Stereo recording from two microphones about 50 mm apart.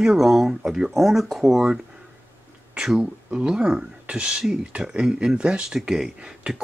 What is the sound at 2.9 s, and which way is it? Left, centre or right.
Speech, right.